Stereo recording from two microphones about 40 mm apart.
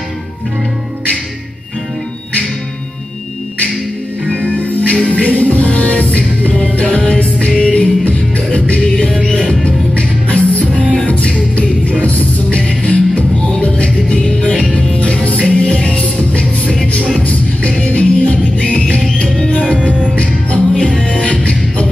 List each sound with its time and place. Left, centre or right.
4.3 s music: left
8.8 s music: centre
10.2 s music: left
12.5 s music: left